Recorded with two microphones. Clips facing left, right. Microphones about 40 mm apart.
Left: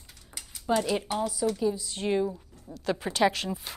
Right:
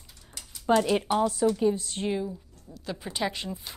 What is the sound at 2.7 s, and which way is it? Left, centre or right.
Speech, left.